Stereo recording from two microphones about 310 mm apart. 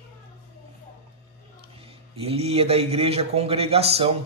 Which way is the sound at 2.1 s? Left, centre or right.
Centre.